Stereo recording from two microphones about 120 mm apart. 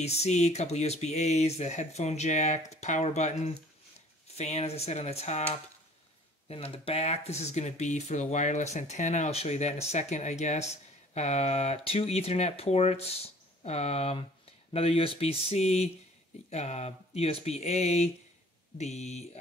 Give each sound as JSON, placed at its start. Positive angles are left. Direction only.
{"t": 0.0, "sound": "speech", "side_deg": 65}
{"t": 6.5, "sound": "speech", "side_deg": 55}